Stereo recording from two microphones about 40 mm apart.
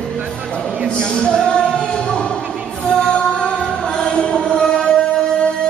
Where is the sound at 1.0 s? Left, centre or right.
Centre.